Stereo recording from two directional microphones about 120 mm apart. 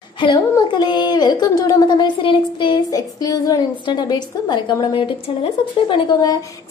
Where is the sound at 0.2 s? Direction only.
40° left (ahead or behind).